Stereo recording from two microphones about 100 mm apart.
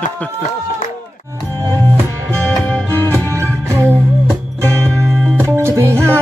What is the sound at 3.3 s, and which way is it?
Music, 30° right (ahead or behind).